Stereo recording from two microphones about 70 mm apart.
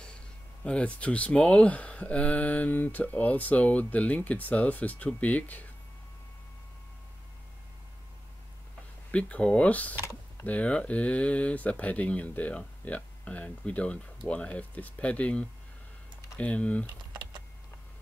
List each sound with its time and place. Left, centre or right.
0.7 s speech: centre
9.1 s speech: centre